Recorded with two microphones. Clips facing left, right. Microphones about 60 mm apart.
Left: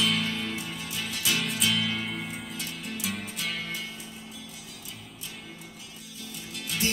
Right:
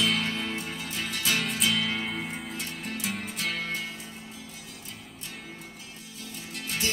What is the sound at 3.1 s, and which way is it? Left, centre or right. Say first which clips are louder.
Music: right 2 dB; right.